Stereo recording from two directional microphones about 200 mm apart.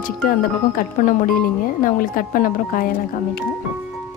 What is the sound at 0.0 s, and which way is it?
Speech, 45° left (ahead or behind).